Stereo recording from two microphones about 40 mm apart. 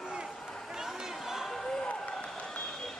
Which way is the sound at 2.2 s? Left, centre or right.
Left.